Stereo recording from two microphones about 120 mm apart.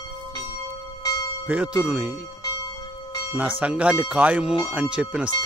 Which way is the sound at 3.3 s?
10° right (ahead or behind).